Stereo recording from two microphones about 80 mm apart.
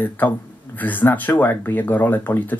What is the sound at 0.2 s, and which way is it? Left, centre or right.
Speech, left.